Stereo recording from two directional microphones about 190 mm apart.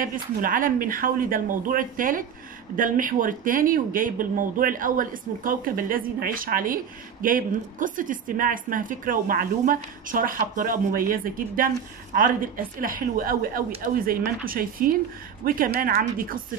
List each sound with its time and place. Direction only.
0.0 s speech: 45° right (ahead or behind)